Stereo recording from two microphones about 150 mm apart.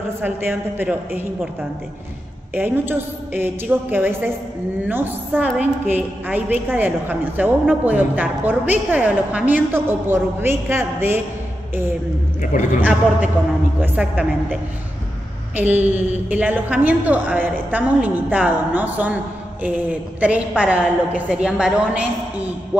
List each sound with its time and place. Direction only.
0.2 s a woman's voice: 15° right (ahead or behind)
2.5 s a woman's voice: 15° right (ahead or behind)
12.5 s a man's voice: 55° left (ahead or behind)
13.7 s a woman's voice: 10° right (ahead or behind)